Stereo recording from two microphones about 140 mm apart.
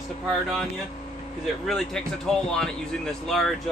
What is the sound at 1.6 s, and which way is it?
Speech, centre (ahead or behind).